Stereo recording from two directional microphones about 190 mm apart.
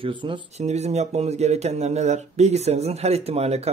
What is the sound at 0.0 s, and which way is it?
Speech, 25° right (ahead or behind).